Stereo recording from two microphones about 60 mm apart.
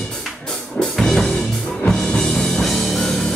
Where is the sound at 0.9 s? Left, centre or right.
Centre.